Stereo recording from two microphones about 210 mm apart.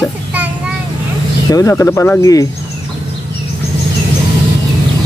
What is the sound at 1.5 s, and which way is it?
Speech, 15° left (ahead or behind).